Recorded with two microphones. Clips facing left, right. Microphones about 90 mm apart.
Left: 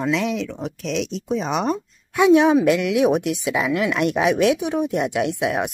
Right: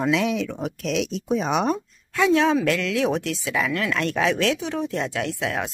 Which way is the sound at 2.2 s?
15° left (ahead or behind).